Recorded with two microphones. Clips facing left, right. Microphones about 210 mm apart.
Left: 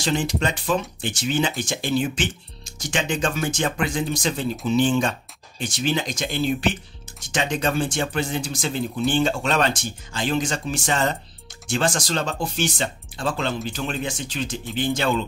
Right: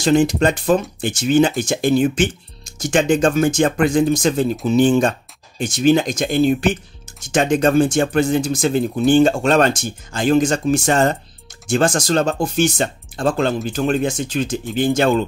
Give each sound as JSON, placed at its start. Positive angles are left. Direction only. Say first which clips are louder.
{"t": 0.0, "sound": "speech", "louder": "right 9 dB", "side_deg": -50}